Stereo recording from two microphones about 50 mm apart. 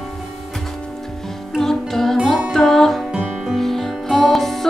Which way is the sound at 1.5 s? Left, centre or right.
Centre.